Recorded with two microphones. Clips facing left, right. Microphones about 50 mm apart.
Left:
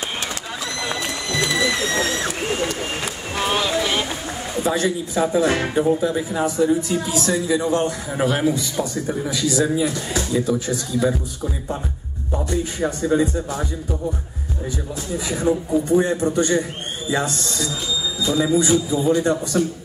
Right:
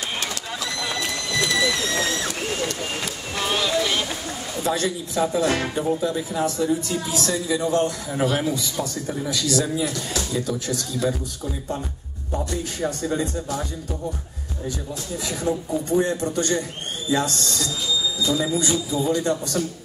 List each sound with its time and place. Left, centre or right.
0.8 s a sound: centre
4.6 s a man's voice: centre
15.2 s a man's voice: centre